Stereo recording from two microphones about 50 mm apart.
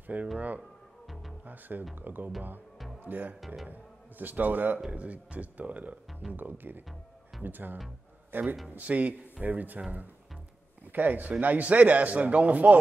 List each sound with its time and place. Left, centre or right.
0.0 s speech: right
1.4 s speech: right
3.3 s speech: centre
3.6 s a man's voice: right
8.6 s a man's voice: right